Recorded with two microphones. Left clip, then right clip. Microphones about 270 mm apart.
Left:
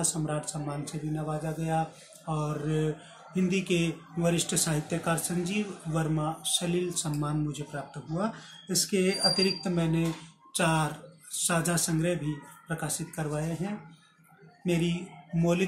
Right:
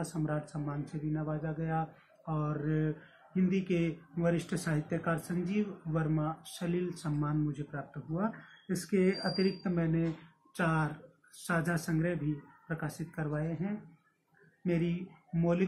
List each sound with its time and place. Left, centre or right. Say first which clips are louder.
0.0 s speech: left 4 dB; centre
14.7 s speech: left 4 dB; left